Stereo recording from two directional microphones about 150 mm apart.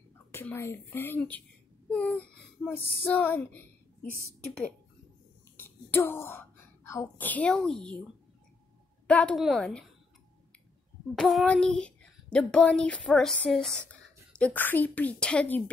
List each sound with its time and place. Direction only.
0.3 s a woman's voice: 15° left (ahead or behind)
5.6 s speech: 15° left (ahead or behind)
9.0 s speech: 5° left (ahead or behind)
11.1 s a woman's voice: centre (ahead or behind)